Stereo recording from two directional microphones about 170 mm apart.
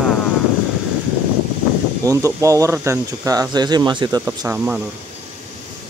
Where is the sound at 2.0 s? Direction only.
20° right (ahead or behind).